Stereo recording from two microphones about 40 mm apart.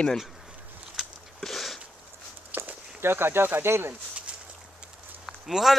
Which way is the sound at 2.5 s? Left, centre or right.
Right.